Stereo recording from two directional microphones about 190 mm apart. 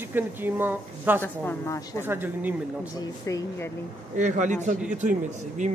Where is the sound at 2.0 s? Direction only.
10° right (ahead or behind).